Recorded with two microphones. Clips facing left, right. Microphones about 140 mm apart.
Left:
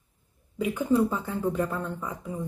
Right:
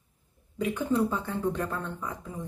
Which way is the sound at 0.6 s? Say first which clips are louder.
Left 3 dB; 10° left (ahead or behind).